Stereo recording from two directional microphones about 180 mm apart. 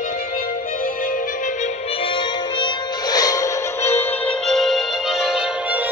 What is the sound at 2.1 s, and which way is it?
Music, 25° left (ahead or behind).